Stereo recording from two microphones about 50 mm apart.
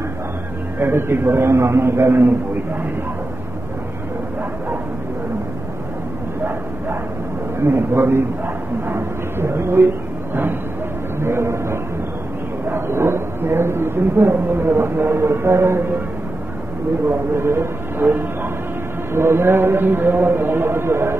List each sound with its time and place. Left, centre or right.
0.7 s speech: right
7.6 s speech: right
11.1 s a sound: right
12.6 s speech: right
17.1 s speech: right
19.1 s speech: right